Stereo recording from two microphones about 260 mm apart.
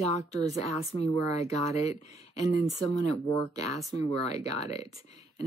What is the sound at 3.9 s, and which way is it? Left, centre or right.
Speech, left.